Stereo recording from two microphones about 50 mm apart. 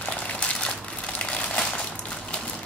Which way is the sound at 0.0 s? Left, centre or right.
Left.